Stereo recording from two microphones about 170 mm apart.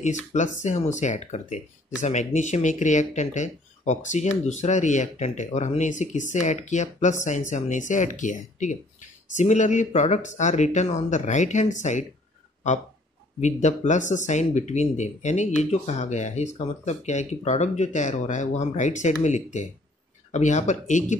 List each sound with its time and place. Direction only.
0.0 s speech: 45° left (ahead or behind)
13.4 s speech: 45° left (ahead or behind)